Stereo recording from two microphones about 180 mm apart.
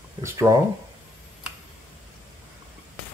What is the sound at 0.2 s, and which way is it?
Speech, 15° right (ahead or behind).